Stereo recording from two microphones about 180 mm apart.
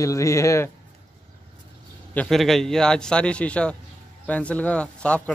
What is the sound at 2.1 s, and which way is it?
A man's voice, centre (ahead or behind).